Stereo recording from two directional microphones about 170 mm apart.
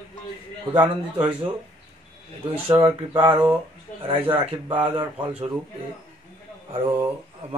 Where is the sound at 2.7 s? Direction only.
30° right (ahead or behind).